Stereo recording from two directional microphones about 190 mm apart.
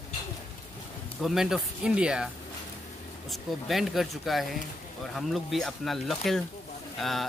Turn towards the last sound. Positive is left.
turn(degrees=0)  # may be behind; listen again after turning